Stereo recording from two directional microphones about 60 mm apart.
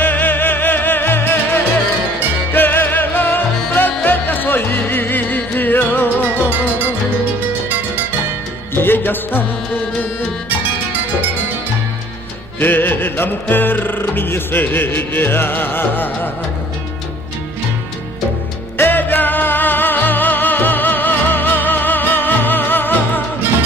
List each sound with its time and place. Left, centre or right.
0.0 s music: left
8.7 s music: left
12.5 s music: left
18.8 s music: left